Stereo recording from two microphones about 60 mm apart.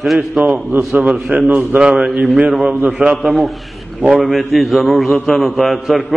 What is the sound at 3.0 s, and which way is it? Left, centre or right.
Speech, right.